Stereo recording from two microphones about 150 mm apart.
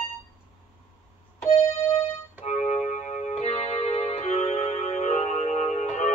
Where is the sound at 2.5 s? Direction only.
50° left (ahead or behind).